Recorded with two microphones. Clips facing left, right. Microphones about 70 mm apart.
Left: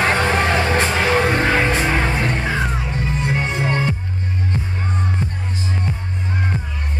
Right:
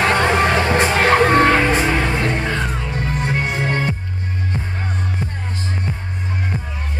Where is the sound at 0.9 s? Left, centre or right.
Right.